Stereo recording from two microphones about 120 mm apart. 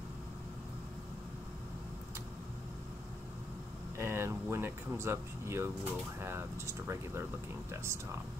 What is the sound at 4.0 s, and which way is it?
Speech, 20° right (ahead or behind).